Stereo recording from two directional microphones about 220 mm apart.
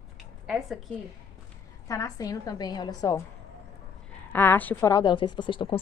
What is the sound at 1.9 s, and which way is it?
A woman's voice, 15° left (ahead or behind).